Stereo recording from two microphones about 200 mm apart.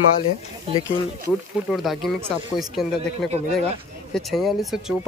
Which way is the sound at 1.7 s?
Centre (ahead or behind).